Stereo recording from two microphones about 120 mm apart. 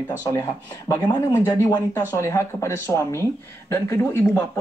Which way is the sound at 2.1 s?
25° left (ahead or behind).